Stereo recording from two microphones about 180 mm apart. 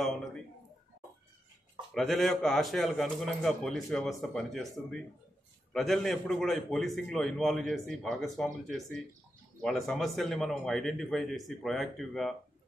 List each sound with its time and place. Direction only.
2.0 s a man's voice: centre (ahead or behind)